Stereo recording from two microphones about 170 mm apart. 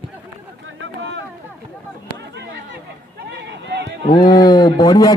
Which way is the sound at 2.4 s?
90° right.